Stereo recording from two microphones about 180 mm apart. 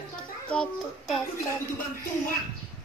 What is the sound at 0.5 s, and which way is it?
Speech, 5° left (ahead or behind).